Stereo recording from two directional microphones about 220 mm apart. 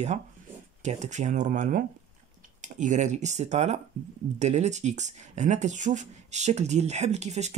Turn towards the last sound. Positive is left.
turn(degrees=-30)  # may be behind; listen again after turning